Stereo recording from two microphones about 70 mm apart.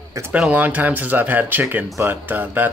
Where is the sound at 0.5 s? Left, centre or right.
Right.